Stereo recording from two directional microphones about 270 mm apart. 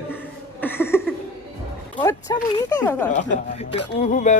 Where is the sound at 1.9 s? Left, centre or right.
Centre.